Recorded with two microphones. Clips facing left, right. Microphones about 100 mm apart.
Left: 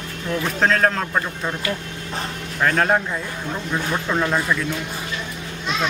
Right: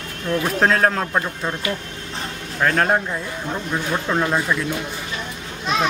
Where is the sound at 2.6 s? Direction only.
Centre (ahead or behind).